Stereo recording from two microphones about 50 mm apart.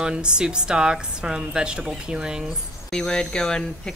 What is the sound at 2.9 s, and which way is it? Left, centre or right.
Speech, centre.